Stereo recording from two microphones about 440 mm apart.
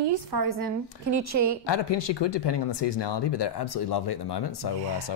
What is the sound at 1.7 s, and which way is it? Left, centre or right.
Speech, left.